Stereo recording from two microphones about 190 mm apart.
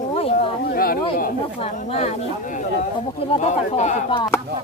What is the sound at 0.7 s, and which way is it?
Chop, 50° left (ahead or behind).